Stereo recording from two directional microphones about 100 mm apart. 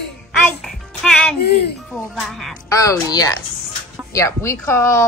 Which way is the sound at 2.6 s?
35° left (ahead or behind).